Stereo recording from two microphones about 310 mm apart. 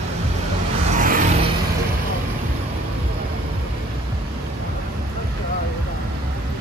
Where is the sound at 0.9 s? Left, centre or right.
Right.